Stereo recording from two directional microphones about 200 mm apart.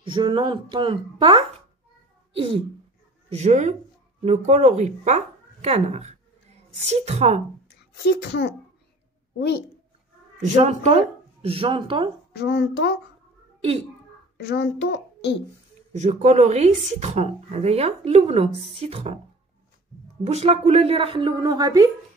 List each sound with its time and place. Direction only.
0.0 s a woman's voice: 25° right (ahead or behind)
7.7 s a woman's voice: 55° left (ahead or behind)
10.4 s a woman's voice: 35° right (ahead or behind)
12.3 s a child's voice: 55° left (ahead or behind)
14.3 s a child's voice: 55° left (ahead or behind)
15.9 s speech: 35° right (ahead or behind)
20.2 s a woman's voice: 30° right (ahead or behind)